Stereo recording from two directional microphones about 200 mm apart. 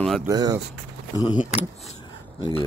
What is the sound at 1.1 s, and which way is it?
Speech, 20° left (ahead or behind).